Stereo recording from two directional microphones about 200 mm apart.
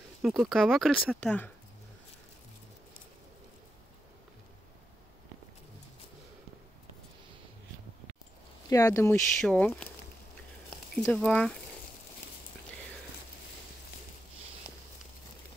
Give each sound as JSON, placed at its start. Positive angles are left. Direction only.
{"t": 0.2, "sound": "speech", "side_deg": 0}
{"t": 8.6, "sound": "speech", "side_deg": 15}
{"t": 11.0, "sound": "speech", "side_deg": 5}